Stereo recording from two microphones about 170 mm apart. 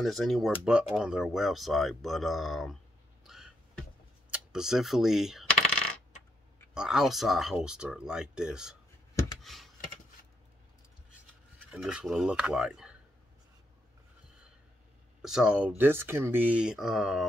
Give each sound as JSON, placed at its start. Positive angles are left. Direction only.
{"t": 0.0, "sound": "speech", "side_deg": 0}
{"t": 3.3, "sound": "a sound", "side_deg": 0}
{"t": 4.3, "sound": "speech", "side_deg": -5}
{"t": 6.7, "sound": "speech", "side_deg": -5}
{"t": 9.4, "sound": "computer keyboard", "side_deg": 0}
{"t": 11.7, "sound": "speech", "side_deg": -5}
{"t": 15.2, "sound": "speech", "side_deg": -5}